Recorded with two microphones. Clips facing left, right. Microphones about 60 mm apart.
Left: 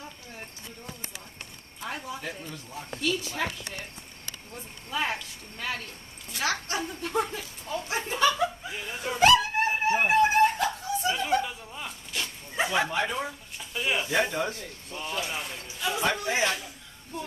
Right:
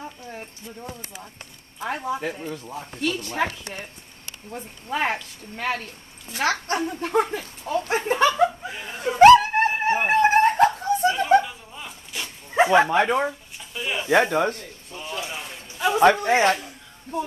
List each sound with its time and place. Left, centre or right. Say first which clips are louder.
2.0 s speech: right 9 dB; right
4.6 s speech: right 5 dB; right
9.2 s dog: right 9 dB; right
10.0 s snicker: right 4 dB; right
11.4 s a sound: even; centre
12.5 s speech: right 10 dB; right
13.7 s speech: even; centre
14.2 s speech: right 7 dB; right
14.6 s a sound: even; centre
16.0 s speech: right 10 dB; right